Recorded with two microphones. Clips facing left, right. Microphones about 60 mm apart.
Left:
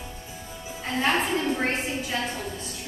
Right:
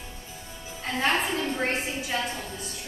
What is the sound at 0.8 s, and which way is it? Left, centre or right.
Speech, centre.